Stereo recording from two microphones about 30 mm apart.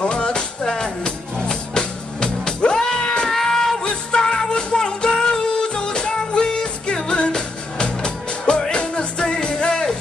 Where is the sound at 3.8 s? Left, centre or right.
Left.